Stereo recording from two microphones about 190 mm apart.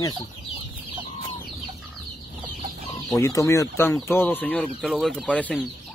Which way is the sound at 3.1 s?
15° left (ahead or behind).